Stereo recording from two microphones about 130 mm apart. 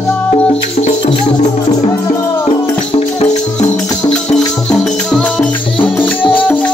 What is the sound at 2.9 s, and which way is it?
Music, 55° left (ahead or behind).